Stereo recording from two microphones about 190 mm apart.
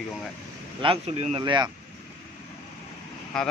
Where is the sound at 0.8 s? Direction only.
30° right (ahead or behind).